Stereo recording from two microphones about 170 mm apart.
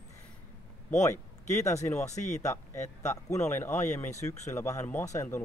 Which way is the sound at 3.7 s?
45° left (ahead or behind).